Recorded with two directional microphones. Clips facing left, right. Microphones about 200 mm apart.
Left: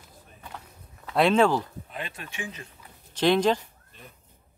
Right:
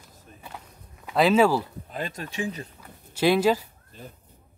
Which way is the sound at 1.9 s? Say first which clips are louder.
Right 6 dB; 40° right (ahead or behind).